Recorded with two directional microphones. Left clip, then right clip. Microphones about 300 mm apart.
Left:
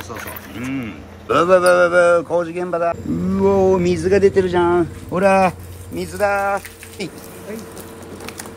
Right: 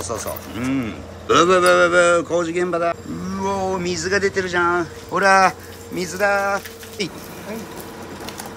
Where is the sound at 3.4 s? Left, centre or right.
Left.